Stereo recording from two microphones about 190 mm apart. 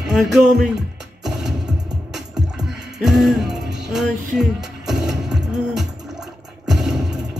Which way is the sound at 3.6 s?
60° right (ahead or behind).